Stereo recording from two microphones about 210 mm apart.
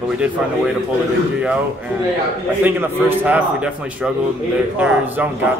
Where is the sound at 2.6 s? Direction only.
10° right (ahead or behind).